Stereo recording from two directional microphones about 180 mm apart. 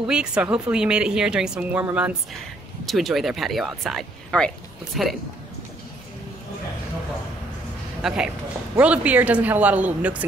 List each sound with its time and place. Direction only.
0.1 s speech: 5° right (ahead or behind)
8.0 s speech: centre (ahead or behind)